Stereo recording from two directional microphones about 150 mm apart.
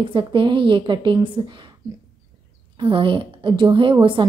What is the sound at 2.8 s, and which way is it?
A woman's voice, 35° right (ahead or behind).